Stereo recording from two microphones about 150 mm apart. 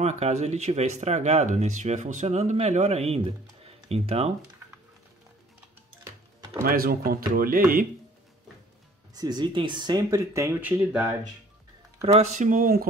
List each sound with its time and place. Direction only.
0.0 s speech: 50° right (ahead or behind)
3.6 s a sound: 40° right (ahead or behind)
6.6 s speech: 75° right (ahead or behind)
9.1 s speech: 25° right (ahead or behind); by 11.1 s 5° right (ahead or behind)
12.0 s speech: 45° right (ahead or behind); by 12.8 s 65° right (ahead or behind)